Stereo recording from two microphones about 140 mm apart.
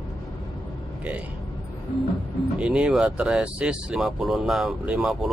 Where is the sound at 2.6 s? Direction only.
5° right (ahead or behind).